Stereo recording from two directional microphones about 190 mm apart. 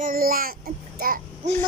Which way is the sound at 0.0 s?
50° right (ahead or behind).